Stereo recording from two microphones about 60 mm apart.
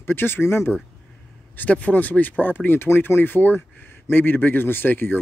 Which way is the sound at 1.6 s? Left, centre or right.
Left.